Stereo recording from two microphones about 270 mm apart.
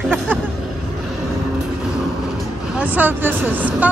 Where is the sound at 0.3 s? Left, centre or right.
Centre.